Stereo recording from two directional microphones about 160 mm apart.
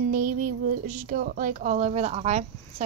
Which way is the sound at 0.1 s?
60° right (ahead or behind).